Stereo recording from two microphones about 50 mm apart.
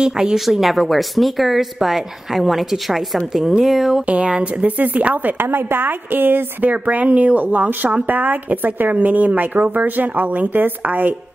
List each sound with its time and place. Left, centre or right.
0.0 s speech: centre
0.5 s a woman's voice: centre
4.0 s speech: right
5.5 s a woman's voice: right
6.7 s speech: right